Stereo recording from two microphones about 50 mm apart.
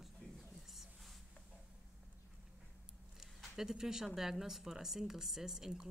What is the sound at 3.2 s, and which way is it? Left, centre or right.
Speech, centre.